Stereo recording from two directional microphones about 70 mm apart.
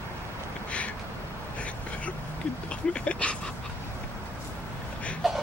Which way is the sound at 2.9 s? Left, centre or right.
Centre.